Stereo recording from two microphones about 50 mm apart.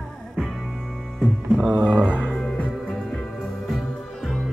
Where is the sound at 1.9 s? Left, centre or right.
Right.